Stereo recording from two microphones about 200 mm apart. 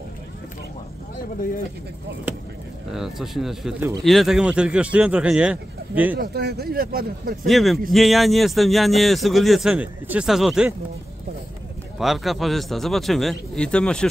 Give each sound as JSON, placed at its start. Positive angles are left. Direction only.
{"t": 2.9, "sound": "speech", "side_deg": 0}
{"t": 6.1, "sound": "speech", "side_deg": -50}
{"t": 7.4, "sound": "speech", "side_deg": 0}
{"t": 12.0, "sound": "speech", "side_deg": 0}